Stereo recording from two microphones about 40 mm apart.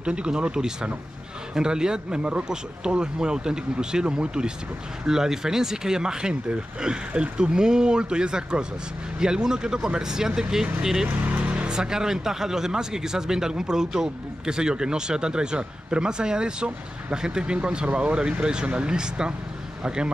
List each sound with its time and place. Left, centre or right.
0.0 s speech: right
11.4 s music: right
11.7 s speech: centre